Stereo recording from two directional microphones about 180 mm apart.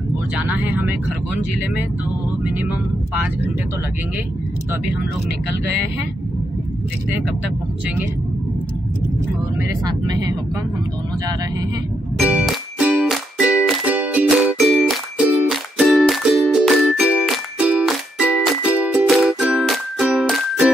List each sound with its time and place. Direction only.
0.4 s speech: 10° right (ahead or behind)
9.6 s speech: 20° right (ahead or behind)
12.2 s music: 5° right (ahead or behind)